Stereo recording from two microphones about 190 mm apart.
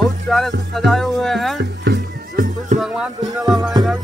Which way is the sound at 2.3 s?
45° right (ahead or behind).